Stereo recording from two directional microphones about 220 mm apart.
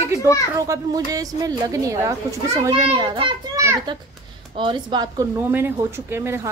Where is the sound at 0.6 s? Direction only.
15° right (ahead or behind).